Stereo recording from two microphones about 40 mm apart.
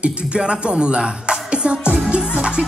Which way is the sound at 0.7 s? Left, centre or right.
Right.